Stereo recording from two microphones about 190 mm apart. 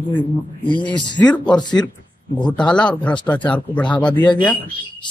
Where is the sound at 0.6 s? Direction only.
25° left (ahead or behind).